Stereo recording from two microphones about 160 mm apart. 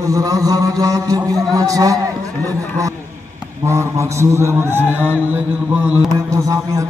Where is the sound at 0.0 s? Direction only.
20° right (ahead or behind).